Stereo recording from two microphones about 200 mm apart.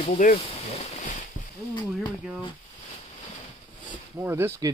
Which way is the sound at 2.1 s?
Centre (ahead or behind).